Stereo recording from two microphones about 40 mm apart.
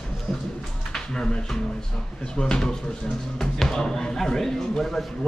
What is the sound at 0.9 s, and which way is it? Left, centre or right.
Speech, centre.